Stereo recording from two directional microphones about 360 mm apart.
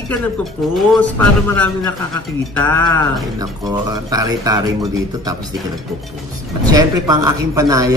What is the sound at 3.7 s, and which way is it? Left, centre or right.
Speech, centre.